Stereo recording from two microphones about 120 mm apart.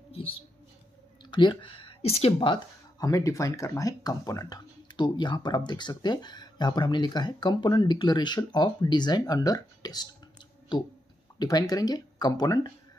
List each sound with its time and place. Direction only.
0.1 s a sound: 50° left (ahead or behind)
1.3 s speech: 40° left (ahead or behind); by 2.5 s 55° left (ahead or behind)
3.0 s speech: 25° left (ahead or behind)
11.3 s speech: 35° left (ahead or behind)